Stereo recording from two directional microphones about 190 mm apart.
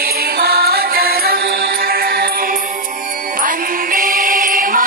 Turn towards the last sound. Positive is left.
turn(degrees=-45)  # may be behind; listen again after turning